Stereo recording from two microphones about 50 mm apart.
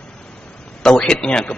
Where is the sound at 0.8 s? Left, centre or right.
Centre.